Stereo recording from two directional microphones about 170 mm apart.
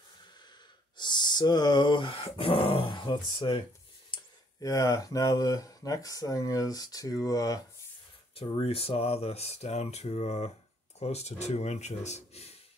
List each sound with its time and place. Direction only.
0.9 s speech: 25° left (ahead or behind)
8.4 s speech: 35° left (ahead or behind)